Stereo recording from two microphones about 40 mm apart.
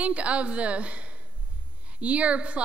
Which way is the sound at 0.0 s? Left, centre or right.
Right.